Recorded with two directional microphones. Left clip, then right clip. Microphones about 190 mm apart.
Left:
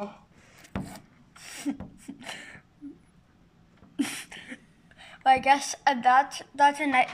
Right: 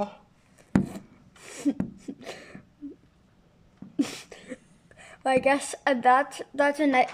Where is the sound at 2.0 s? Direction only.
20° right (ahead or behind).